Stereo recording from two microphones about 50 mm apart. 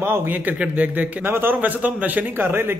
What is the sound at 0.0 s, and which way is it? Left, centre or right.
Speech, right.